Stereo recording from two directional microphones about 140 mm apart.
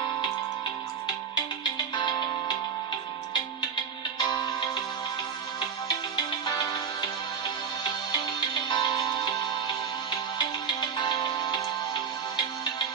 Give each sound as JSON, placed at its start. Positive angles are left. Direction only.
{"t": 2.0, "sound": "music", "side_deg": 35}
{"t": 4.2, "sound": "music", "side_deg": 35}
{"t": 6.4, "sound": "music", "side_deg": 30}
{"t": 8.6, "sound": "music", "side_deg": 35}
{"t": 10.8, "sound": "music", "side_deg": 35}